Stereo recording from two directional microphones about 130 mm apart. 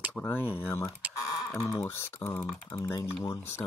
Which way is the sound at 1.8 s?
15° left (ahead or behind).